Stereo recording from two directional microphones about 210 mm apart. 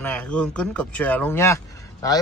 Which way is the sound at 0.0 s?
5° left (ahead or behind).